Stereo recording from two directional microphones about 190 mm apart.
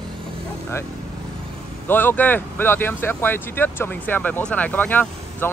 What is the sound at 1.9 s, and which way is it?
Speech, 10° left (ahead or behind).